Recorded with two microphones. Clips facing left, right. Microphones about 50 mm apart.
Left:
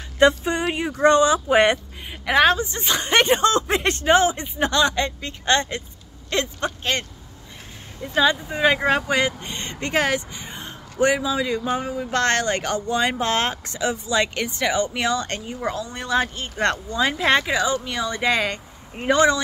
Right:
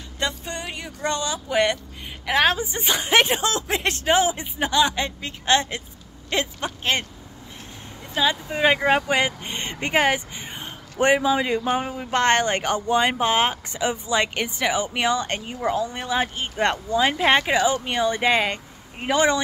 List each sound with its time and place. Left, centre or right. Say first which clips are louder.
0.4 s speech: left 9 dB; centre
2.2 s speech: left 3 dB; centre
2.6 s speech: left 1 dB; centre
8.0 s speech: left 3 dB; centre
8.5 s speech: even; centre